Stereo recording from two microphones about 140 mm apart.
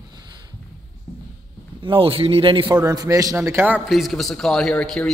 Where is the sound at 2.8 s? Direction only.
25° right (ahead or behind).